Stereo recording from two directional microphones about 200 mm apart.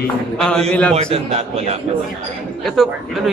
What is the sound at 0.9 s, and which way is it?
Speech, 30° right (ahead or behind).